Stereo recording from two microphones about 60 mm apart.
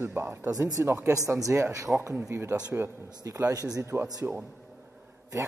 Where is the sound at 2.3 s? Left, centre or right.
Right.